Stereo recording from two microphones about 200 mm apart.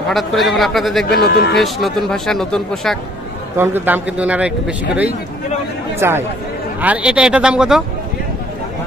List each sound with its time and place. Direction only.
0.1 s speech: centre (ahead or behind)
1.2 s speech: 55° left (ahead or behind)
1.6 s speech: centre (ahead or behind)
3.5 s a man's voice: 10° right (ahead or behind)